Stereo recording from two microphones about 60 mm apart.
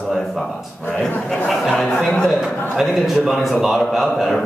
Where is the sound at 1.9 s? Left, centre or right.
Centre.